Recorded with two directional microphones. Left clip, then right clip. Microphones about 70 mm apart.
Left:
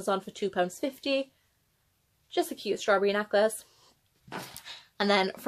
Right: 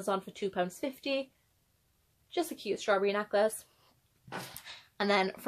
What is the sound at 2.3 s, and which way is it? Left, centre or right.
Speech, left.